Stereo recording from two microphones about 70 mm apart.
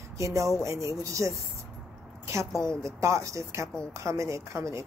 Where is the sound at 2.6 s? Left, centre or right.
Right.